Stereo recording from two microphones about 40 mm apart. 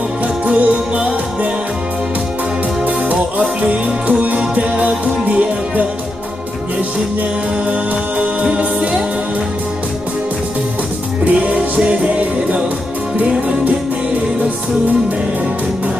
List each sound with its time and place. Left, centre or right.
0.5 s music: right
3.3 s music: right
8.2 s music: right
11.4 s music: right